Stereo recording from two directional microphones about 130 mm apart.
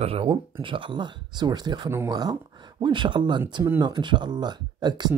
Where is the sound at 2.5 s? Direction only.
35° right (ahead or behind).